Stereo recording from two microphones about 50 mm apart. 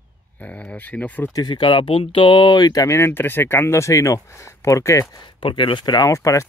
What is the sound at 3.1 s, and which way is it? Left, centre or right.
Speech, left.